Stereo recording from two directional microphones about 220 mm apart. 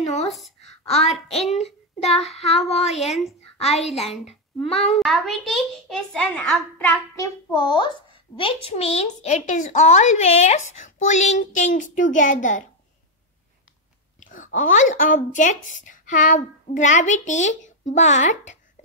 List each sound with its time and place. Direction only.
0.0 s a child's voice: 30° left (ahead or behind)
0.8 s child singing: 30° left (ahead or behind)
3.5 s a child's voice: 30° left (ahead or behind)
4.9 s a child's voice: centre (ahead or behind)
7.5 s a child's voice: 20° left (ahead or behind); by 12.6 s 35° left (ahead or behind)
14.2 s a woman's voice: 35° left (ahead or behind)